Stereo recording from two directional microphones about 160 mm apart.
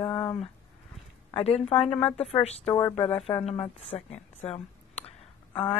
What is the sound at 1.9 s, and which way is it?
Speech, 10° left (ahead or behind).